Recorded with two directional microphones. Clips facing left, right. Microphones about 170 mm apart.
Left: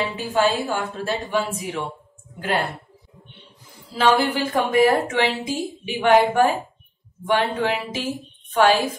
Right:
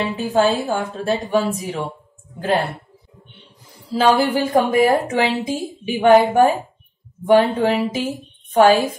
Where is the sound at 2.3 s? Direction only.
30° right (ahead or behind).